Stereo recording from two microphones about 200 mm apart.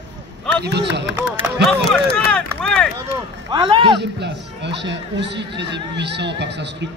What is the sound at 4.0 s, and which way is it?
Speech, 55° right (ahead or behind).